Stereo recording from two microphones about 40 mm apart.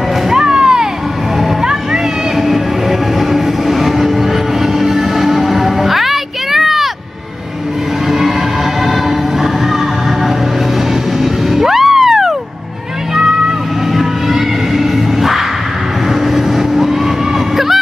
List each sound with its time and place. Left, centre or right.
0.3 s music: centre
1.6 s train: centre
11.1 s vehicle: centre
13.9 s music: centre
16.3 s vehicle: centre